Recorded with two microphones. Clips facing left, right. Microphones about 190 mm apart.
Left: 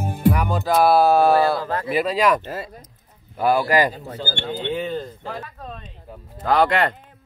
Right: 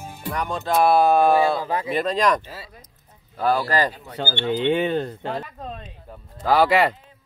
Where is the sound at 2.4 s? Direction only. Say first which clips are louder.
Left 9 dB; 50° left (ahead or behind).